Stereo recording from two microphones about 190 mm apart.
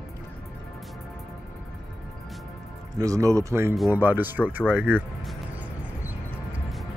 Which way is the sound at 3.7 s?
Centre (ahead or behind).